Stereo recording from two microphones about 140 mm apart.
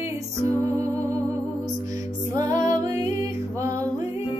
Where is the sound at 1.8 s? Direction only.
25° right (ahead or behind).